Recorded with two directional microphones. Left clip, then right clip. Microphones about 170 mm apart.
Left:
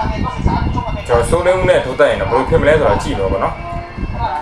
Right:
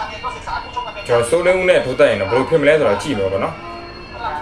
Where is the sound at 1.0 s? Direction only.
20° right (ahead or behind).